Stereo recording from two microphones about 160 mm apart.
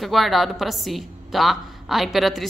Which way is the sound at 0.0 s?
Centre (ahead or behind).